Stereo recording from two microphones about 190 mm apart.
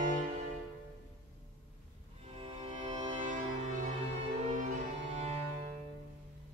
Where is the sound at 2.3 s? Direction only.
30° right (ahead or behind).